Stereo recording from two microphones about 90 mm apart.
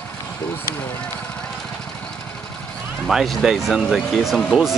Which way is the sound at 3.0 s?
Centre (ahead or behind).